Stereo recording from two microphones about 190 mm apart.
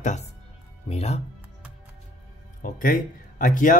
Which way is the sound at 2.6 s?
45° left (ahead or behind).